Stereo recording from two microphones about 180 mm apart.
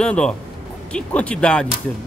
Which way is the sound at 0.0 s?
5° left (ahead or behind).